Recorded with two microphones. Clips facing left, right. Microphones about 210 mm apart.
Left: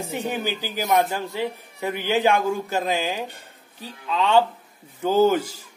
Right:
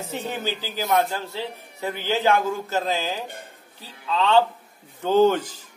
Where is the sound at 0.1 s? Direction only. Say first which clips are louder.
Left 1 dB; 15° left (ahead or behind).